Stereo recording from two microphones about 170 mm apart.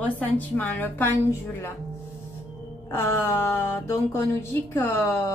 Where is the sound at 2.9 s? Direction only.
15° left (ahead or behind).